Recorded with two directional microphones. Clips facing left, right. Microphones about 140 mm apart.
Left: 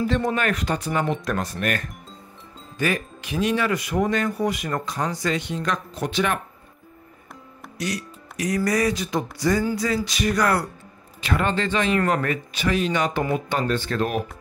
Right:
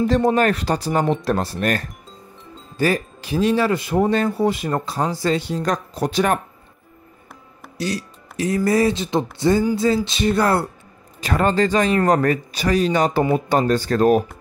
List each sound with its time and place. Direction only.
0.0 s speech: 35° right (ahead or behind)
7.7 s speech: 30° right (ahead or behind)
11.1 s speech: 40° right (ahead or behind)